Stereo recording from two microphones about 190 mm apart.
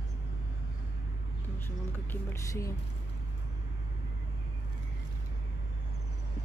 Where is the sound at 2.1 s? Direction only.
15° left (ahead or behind).